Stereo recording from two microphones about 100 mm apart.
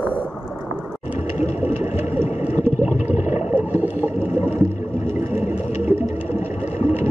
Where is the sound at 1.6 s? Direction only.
20° right (ahead or behind).